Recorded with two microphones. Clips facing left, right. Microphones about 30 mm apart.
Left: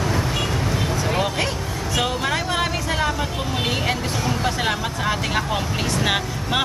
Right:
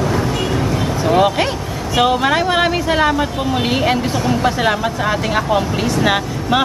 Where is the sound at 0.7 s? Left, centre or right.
Centre.